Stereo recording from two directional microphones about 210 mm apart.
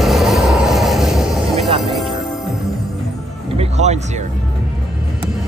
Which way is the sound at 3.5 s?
30° right (ahead or behind).